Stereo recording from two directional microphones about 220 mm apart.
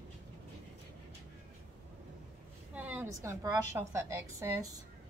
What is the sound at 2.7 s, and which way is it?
A woman's voice, 5° right (ahead or behind).